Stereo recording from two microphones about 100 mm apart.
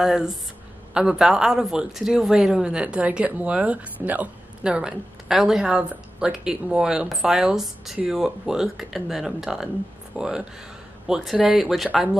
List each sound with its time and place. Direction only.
0.0 s speech: 5° right (ahead or behind)